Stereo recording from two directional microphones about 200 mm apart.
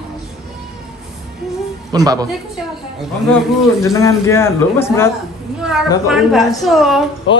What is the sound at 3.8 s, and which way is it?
A man's voice, 15° left (ahead or behind).